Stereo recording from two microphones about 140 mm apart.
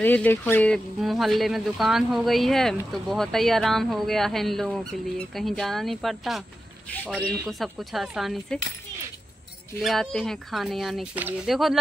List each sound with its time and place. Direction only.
0.0 s speech: 10° left (ahead or behind)
1.0 s speech: centre (ahead or behind)
9.8 s speech: centre (ahead or behind)